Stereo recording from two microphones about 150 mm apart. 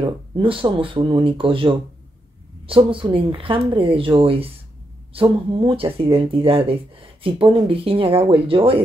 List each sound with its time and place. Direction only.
0.0 s speech: 35° right (ahead or behind)